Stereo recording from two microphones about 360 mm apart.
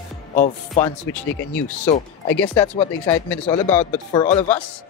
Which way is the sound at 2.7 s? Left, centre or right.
Centre.